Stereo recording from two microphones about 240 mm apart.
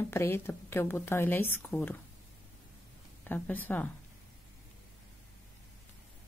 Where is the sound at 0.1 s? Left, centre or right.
Centre.